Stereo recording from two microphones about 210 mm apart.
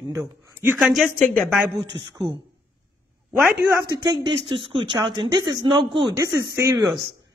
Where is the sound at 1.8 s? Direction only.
25° right (ahead or behind).